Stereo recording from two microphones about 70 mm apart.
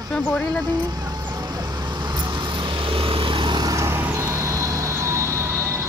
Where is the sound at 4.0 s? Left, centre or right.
Right.